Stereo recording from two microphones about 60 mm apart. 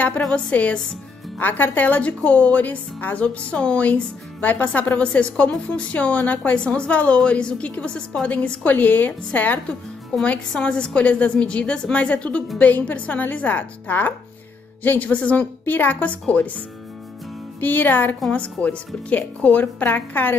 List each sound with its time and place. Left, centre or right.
0.3 s a woman's voice: left